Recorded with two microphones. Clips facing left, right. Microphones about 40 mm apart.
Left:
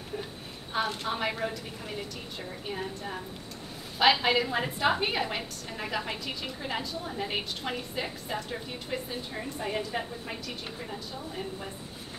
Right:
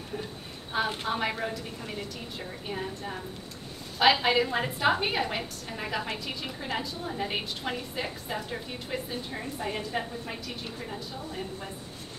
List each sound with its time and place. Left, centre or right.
1.0 s a woman's voice: centre